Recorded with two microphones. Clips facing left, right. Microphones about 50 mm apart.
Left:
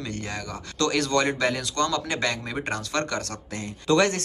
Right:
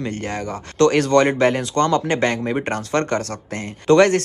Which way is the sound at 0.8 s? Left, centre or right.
Right.